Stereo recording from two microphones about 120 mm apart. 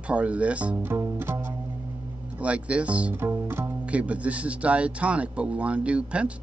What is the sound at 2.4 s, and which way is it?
Speech, 10° right (ahead or behind).